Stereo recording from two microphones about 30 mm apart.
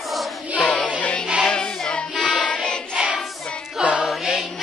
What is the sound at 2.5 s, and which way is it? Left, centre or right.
Child singing, left.